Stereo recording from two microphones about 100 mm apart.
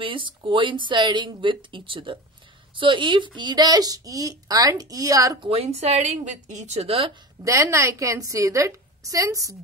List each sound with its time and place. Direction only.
0.0 s a woman's voice: 55° right (ahead or behind); by 5.4 s 35° right (ahead or behind)
5.5 s a woman's voice: 90° right
7.4 s a woman's voice: 30° right (ahead or behind)